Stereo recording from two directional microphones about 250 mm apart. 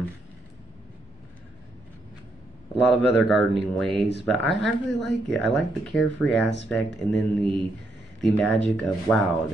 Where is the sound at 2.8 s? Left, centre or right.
Centre.